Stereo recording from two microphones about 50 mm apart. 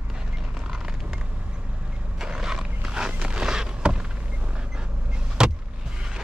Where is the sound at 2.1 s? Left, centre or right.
Centre.